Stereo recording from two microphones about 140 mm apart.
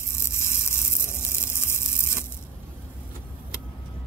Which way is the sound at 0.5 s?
15° left (ahead or behind).